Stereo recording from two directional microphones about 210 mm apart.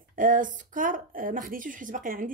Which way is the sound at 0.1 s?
40° right (ahead or behind).